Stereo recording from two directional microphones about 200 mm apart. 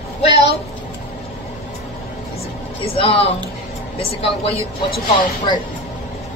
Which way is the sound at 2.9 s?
30° left (ahead or behind).